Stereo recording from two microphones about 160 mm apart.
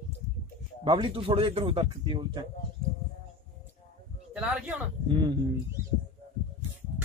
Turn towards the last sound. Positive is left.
turn(degrees=-25)  # may be behind; listen again after turning